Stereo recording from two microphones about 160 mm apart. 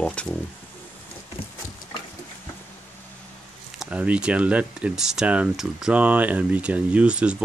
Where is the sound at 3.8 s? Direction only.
10° right (ahead or behind).